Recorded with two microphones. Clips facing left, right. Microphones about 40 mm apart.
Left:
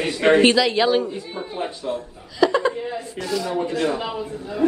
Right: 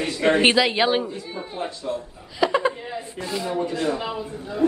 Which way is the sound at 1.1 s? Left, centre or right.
Centre.